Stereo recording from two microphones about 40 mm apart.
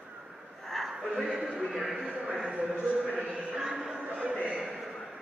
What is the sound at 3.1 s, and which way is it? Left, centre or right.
Music, right.